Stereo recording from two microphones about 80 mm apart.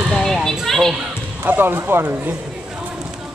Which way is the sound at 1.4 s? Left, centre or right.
Right.